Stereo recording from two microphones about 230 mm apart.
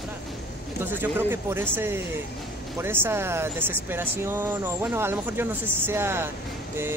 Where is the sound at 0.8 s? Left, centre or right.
Centre.